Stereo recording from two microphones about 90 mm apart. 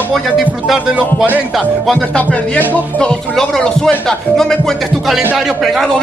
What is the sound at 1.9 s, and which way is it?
Speech, 15° left (ahead or behind).